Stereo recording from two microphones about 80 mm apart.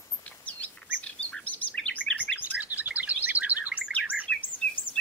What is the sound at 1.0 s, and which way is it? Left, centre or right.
Chirp, centre.